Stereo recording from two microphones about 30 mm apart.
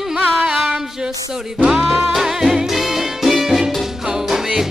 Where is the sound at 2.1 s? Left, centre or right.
Centre.